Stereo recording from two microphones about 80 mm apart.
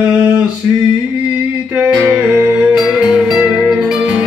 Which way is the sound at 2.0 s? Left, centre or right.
Right.